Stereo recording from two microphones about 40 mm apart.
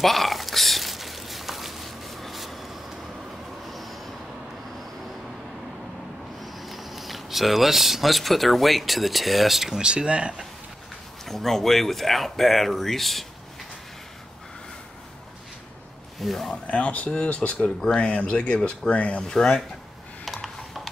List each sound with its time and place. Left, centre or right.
0.0 s a sound: centre
3.6 s train: centre
6.4 s speech: centre
9.8 s speech: right
11.2 s speech: centre
16.2 s speech: centre
16.6 s speech: left
19.2 s speech: centre
20.4 s a sound: centre